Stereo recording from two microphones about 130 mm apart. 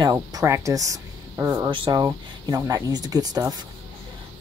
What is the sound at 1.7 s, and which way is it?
Speech, 35° right (ahead or behind).